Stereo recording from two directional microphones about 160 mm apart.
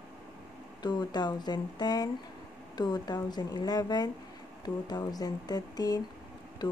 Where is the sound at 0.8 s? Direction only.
25° left (ahead or behind).